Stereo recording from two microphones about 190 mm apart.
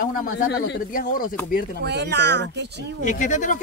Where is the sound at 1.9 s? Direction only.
60° right (ahead or behind).